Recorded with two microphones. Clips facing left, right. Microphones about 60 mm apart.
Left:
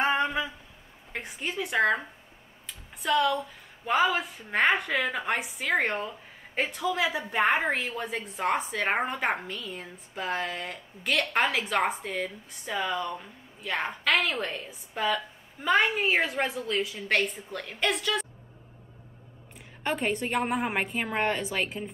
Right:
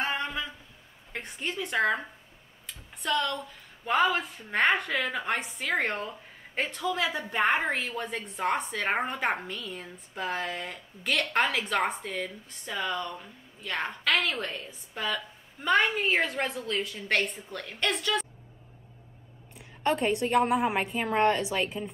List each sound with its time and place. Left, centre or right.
0.0 s a sound: centre
1.1 s speech: centre
19.8 s a woman's voice: centre